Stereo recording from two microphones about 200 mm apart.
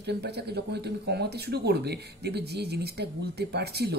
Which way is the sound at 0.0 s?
55° right (ahead or behind).